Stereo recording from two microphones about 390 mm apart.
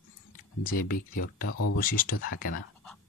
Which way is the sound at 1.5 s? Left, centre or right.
Left.